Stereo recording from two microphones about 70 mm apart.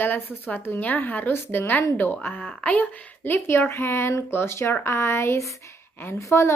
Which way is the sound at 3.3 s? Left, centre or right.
Left.